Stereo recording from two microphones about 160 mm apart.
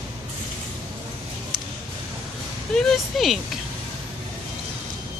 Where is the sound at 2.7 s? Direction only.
5° left (ahead or behind).